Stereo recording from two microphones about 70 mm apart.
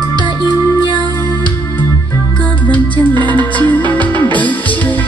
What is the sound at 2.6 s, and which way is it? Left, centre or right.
Music, left.